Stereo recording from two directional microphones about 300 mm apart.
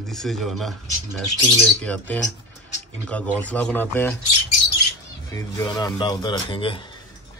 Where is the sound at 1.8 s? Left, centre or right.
Centre.